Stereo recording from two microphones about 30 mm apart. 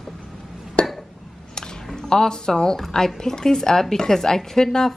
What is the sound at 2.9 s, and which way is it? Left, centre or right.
A woman's voice, centre.